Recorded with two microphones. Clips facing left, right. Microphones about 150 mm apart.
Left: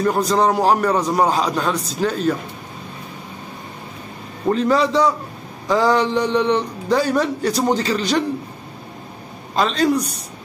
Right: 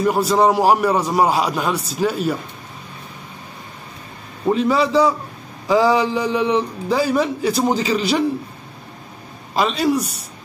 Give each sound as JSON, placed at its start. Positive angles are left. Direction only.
{"t": 0.0, "sound": "a man's voice", "side_deg": -10}
{"t": 4.5, "sound": "a man's voice", "side_deg": -5}
{"t": 9.6, "sound": "a man's voice", "side_deg": -5}